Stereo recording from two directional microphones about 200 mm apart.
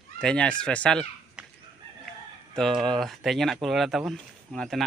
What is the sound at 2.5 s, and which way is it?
Speech, 5° left (ahead or behind).